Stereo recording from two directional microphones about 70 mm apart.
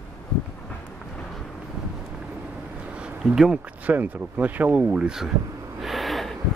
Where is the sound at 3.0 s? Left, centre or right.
Centre.